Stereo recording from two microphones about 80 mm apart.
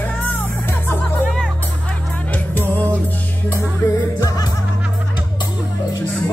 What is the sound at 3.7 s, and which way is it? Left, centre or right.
Music, left.